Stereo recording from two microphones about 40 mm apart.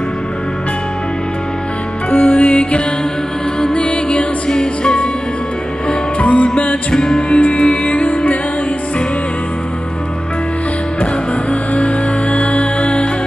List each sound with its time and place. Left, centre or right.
2.0 s music: left
2.3 s music: left
5.9 s music: left
6.9 s music: left
7.3 s music: left
11.7 s music: left